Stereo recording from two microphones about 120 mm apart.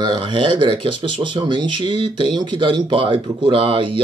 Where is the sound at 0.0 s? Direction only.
40° right (ahead or behind).